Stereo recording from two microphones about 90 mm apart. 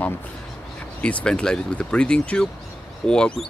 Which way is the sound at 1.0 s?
10° left (ahead or behind).